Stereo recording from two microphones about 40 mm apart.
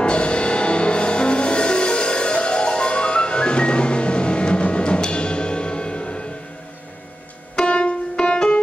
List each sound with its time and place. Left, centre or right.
0.0 s music: left
7.5 s music: left